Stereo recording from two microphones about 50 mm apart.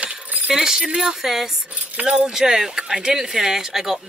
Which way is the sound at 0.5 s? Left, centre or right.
Centre.